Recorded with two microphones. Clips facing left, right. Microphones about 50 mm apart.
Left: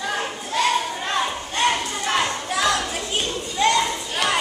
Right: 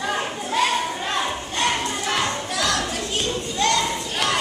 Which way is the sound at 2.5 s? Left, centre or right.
Centre.